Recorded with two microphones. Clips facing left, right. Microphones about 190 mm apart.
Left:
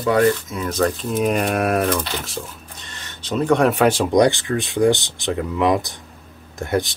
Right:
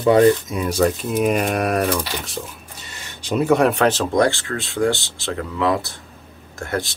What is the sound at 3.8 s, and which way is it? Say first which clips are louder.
Speech: left 2 dB; 10° left (ahead or behind).